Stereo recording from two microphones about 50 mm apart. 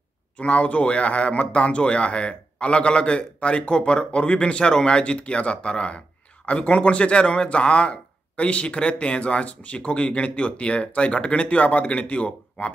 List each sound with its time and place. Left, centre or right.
0.4 s speech: left